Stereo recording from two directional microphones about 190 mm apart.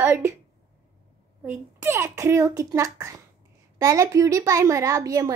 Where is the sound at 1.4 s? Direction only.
10° right (ahead or behind).